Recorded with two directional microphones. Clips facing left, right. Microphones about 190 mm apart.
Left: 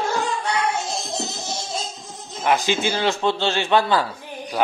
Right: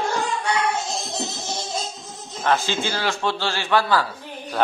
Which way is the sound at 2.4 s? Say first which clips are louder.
Left 2 dB; 15° left (ahead or behind).